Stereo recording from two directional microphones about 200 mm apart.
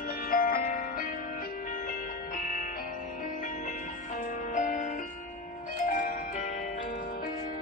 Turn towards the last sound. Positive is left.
turn(degrees=40)  # may be behind; listen again after turning